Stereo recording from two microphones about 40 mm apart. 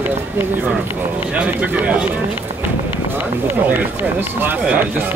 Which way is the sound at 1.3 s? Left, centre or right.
Right.